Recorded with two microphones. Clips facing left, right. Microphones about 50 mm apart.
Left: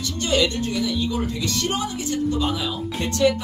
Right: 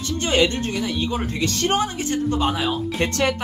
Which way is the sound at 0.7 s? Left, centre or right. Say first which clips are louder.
Even; right.